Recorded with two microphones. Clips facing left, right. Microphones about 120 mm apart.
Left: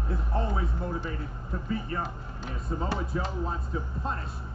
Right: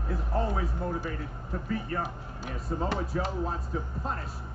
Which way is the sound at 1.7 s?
50° right (ahead or behind).